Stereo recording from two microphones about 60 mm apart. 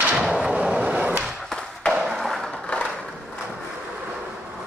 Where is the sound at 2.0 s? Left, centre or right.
Centre.